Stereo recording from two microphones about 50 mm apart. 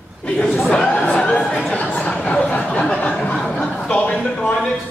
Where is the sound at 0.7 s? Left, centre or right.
Centre.